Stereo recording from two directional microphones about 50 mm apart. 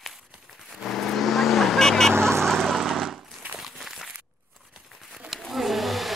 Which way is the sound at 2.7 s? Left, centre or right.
Centre.